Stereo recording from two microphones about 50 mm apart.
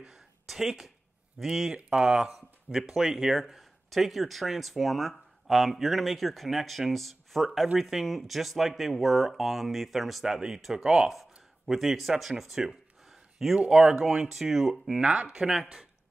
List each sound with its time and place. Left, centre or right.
0.0 s a sound: centre
1.4 s speech: centre
15.0 s speech: centre